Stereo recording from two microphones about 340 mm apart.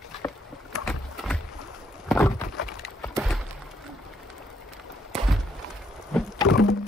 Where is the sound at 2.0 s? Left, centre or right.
Centre.